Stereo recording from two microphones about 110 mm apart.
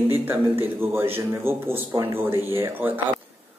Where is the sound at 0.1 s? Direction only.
20° right (ahead or behind).